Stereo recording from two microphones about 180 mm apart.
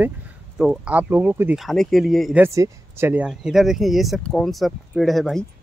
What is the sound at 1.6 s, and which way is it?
Speech, centre (ahead or behind).